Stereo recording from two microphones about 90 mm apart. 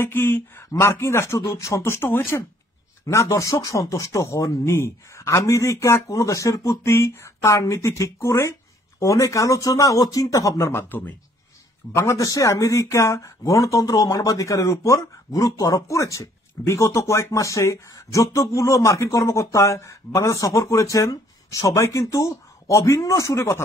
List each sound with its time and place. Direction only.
0.0 s speech: 25° left (ahead or behind)
11.9 s speech: 35° left (ahead or behind)